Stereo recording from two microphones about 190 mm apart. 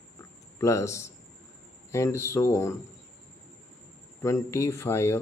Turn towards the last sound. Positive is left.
turn(degrees=15)  # may be behind; listen again after turning